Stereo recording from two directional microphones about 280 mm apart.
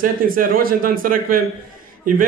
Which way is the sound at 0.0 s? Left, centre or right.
Right.